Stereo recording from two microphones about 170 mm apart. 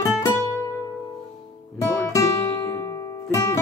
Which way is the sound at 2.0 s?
20° left (ahead or behind).